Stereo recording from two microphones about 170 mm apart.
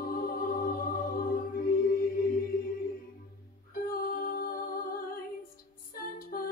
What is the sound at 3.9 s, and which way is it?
Music, 60° left (ahead or behind).